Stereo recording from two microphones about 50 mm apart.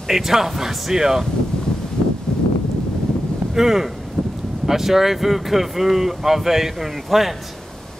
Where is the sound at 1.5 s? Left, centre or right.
Centre.